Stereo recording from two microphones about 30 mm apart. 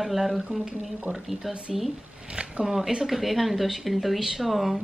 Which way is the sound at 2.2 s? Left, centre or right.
Right.